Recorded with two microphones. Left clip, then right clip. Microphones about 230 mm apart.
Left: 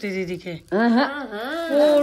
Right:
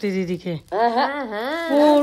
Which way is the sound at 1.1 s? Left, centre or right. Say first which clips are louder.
Right 3 dB; right.